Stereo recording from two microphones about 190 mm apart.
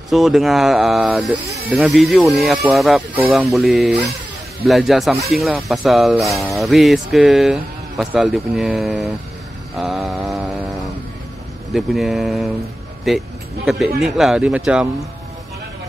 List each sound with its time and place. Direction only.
0.1 s speech: centre (ahead or behind)
9.8 s mantra: centre (ahead or behind)
11.7 s speech: centre (ahead or behind)